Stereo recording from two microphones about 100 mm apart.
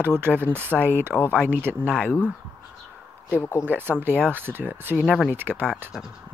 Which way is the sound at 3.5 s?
20° right (ahead or behind).